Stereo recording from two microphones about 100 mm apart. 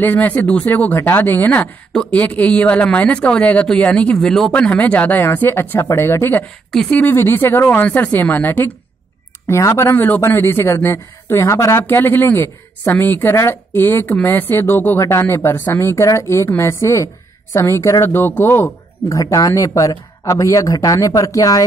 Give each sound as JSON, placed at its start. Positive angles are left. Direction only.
{"t": 0.0, "sound": "speech", "side_deg": 15}
{"t": 6.7, "sound": "speech", "side_deg": 10}
{"t": 7.1, "sound": "speech", "side_deg": 20}
{"t": 9.5, "sound": "speech", "side_deg": 30}
{"t": 19.1, "sound": "speech", "side_deg": 35}